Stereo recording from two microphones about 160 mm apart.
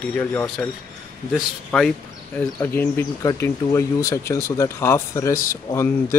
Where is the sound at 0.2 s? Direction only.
10° left (ahead or behind).